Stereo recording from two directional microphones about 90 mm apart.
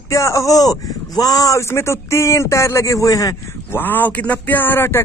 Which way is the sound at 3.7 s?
20° left (ahead or behind).